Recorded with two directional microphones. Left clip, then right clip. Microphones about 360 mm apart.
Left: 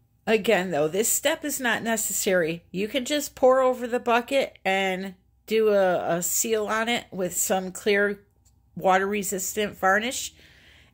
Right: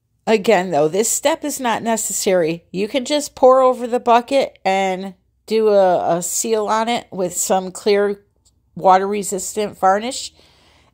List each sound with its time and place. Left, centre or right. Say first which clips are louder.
0.2 s a woman's voice: right 7 dB; right